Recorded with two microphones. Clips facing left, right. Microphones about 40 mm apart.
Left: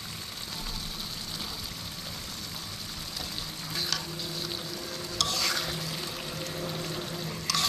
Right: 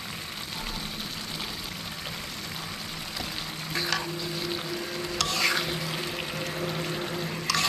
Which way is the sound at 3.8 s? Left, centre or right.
Centre.